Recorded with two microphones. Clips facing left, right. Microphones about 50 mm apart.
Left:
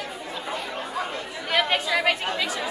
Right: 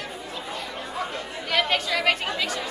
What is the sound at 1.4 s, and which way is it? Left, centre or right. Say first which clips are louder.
Chatter: left 1 dB; centre.